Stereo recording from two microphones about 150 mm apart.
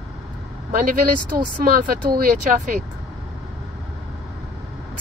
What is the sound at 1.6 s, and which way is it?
Speech, 75° right (ahead or behind).